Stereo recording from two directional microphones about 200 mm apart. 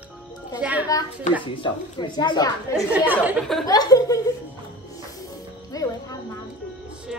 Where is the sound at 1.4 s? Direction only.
25° left (ahead or behind).